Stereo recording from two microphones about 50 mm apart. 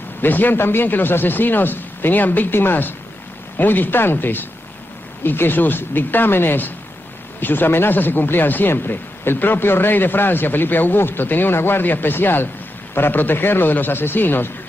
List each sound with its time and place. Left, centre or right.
0.2 s speech: left